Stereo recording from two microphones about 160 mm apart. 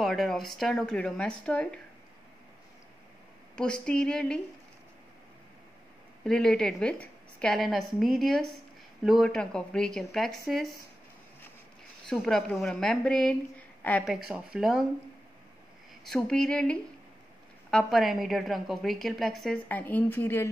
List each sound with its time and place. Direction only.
0.0 s a woman's voice: centre (ahead or behind)
3.5 s a woman's voice: 5° left (ahead or behind)
6.2 s a woman's voice: 5° left (ahead or behind)
12.1 s a woman's voice: 5° left (ahead or behind)
14.0 s a woman's voice: 5° right (ahead or behind)
16.1 s a woman's voice: 5° left (ahead or behind)